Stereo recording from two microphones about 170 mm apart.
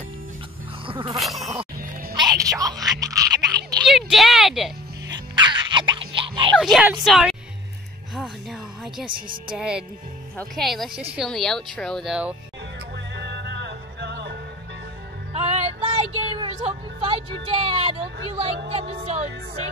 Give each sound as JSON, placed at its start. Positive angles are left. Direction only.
{"t": 0.8, "sound": "music", "side_deg": -30}
{"t": 1.1, "sound": "a sound", "side_deg": 0}
{"t": 1.8, "sound": "music", "side_deg": -60}
{"t": 2.2, "sound": "a sound", "side_deg": -20}
{"t": 3.8, "sound": "music", "side_deg": 0}
{"t": 5.1, "sound": "music", "side_deg": -25}
{"t": 6.6, "sound": "speech", "side_deg": 0}
{"t": 8.1, "sound": "a sound", "side_deg": 0}
{"t": 9.6, "sound": "speech", "side_deg": -5}
{"t": 12.9, "sound": "music", "side_deg": -90}
{"t": 15.3, "sound": "music", "side_deg": -35}